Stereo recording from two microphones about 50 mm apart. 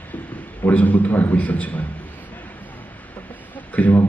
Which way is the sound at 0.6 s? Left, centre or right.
Left.